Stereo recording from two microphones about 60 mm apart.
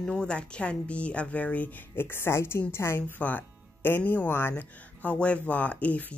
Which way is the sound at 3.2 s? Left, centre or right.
Left.